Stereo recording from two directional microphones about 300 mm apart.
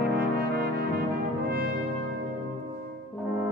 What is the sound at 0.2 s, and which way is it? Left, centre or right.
Brass instrument, right.